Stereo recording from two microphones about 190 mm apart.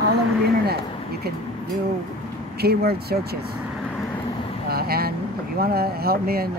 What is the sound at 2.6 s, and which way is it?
Speech, 55° right (ahead or behind).